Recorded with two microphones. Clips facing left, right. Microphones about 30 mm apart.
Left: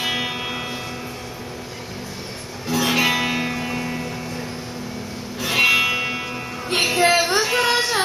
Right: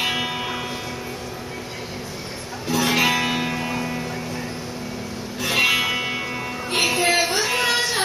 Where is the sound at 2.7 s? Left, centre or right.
Centre.